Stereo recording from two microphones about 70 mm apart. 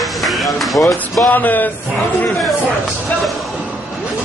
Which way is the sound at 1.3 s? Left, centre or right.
Left.